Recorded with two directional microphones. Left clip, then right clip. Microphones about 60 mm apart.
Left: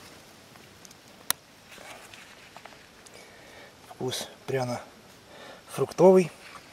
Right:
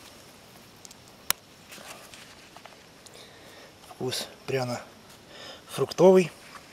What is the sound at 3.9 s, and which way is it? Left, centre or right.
Speech, right.